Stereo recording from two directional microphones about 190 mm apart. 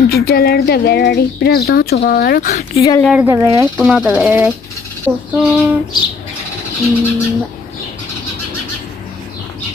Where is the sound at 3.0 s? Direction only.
5° right (ahead or behind).